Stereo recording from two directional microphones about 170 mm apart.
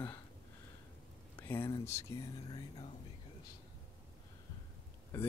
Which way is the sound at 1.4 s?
15° left (ahead or behind).